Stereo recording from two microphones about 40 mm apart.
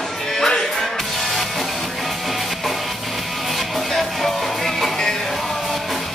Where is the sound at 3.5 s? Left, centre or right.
Centre.